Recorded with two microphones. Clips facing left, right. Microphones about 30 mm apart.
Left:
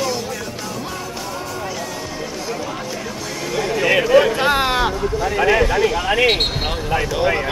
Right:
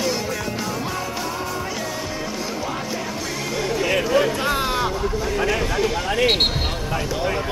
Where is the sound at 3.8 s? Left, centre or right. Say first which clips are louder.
Left 6 dB; left.